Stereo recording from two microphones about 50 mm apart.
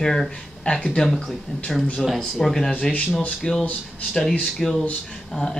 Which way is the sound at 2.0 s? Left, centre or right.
Centre.